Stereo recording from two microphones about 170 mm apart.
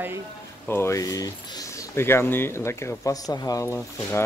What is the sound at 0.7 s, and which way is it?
Speech, 15° left (ahead or behind).